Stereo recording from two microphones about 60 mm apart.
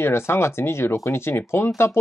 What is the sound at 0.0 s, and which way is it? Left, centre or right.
Speech, left.